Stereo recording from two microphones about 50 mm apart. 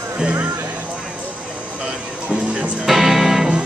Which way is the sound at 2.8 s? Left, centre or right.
Centre.